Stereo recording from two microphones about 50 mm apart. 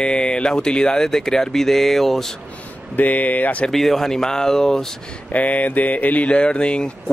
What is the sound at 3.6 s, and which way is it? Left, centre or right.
Speech, centre.